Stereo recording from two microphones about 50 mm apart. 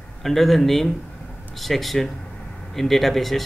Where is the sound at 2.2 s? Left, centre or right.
Centre.